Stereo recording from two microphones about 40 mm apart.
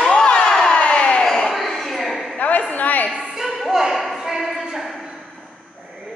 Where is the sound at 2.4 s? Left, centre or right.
Left.